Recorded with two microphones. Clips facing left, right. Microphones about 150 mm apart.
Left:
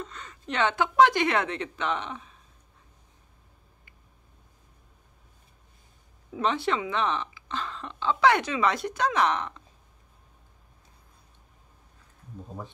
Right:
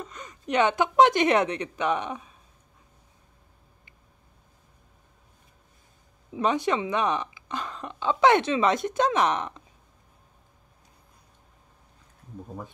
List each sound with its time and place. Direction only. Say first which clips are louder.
0.0 s speech: right 1 dB; 15° right (ahead or behind)
6.3 s speech: right 2 dB; 15° right (ahead or behind)